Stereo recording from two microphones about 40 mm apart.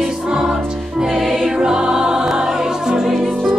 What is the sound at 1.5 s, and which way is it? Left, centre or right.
Music, centre.